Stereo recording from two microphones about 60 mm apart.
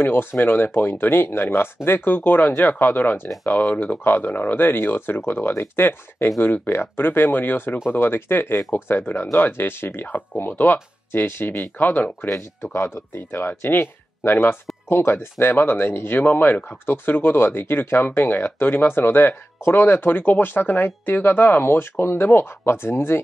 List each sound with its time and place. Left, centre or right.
0.0 s speech: left
12.6 s speech: left